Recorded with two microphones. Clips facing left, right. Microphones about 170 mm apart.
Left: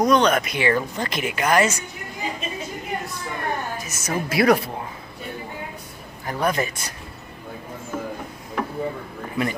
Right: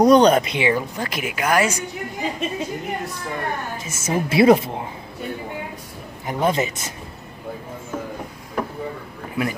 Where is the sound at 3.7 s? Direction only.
25° right (ahead or behind).